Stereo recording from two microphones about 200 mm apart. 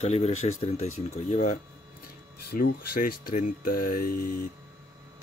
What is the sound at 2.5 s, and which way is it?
Speech, 45° left (ahead or behind).